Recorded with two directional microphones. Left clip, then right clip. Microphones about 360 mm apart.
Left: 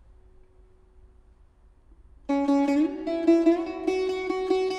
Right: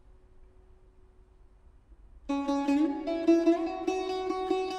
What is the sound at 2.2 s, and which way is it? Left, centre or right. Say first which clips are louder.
Music: left 6 dB; left.